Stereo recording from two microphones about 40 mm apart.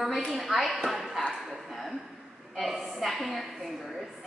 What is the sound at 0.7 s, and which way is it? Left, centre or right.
Speech, centre.